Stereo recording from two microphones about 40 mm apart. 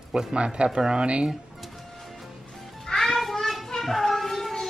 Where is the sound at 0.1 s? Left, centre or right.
Right.